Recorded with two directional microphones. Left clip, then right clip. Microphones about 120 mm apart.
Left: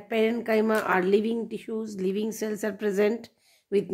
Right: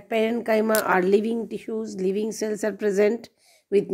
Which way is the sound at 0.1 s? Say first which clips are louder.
Right 2 dB; 45° right (ahead or behind).